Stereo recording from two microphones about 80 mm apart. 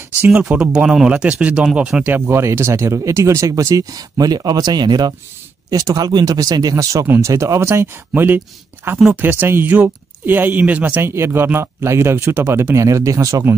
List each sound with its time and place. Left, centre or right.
0.4 s speech: centre
2.1 s speech: right
5.7 s speech: right; by 11.0 s centre
11.0 s speech: right